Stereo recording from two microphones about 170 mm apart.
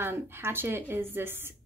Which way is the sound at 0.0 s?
15° right (ahead or behind).